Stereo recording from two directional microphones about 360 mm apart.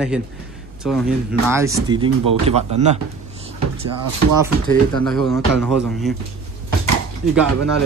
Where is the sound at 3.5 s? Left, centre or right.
Right.